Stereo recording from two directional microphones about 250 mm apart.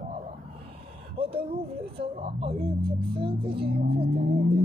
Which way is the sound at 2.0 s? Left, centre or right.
Right.